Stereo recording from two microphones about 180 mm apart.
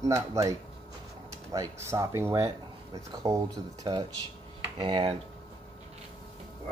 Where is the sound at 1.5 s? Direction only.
15° right (ahead or behind).